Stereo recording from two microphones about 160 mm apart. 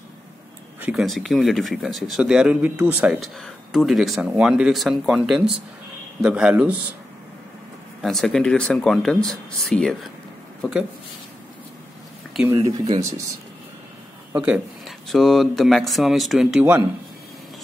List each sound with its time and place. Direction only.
0.7 s a sound: 10° right (ahead or behind)
1.0 s a man's voice: centre (ahead or behind)
8.0 s a man's voice: centre (ahead or behind)
12.4 s speech: 25° right (ahead or behind)
14.3 s a man's voice: 10° right (ahead or behind)